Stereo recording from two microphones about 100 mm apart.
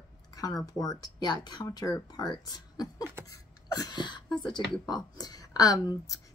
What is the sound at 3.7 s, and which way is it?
Speech, 45° left (ahead or behind).